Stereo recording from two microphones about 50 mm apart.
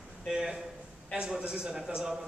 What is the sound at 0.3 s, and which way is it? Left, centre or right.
A man's voice, centre.